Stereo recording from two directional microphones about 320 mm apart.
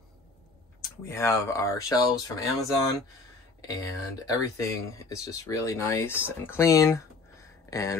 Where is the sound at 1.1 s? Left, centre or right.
Centre.